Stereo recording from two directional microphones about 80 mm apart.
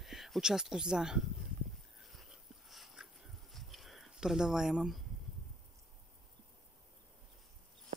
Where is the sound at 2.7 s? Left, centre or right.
Centre.